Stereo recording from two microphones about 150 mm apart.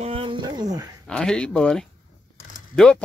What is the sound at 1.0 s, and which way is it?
Speech, 5° left (ahead or behind).